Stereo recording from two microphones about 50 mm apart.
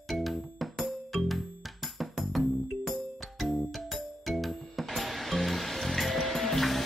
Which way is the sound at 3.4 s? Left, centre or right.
Centre.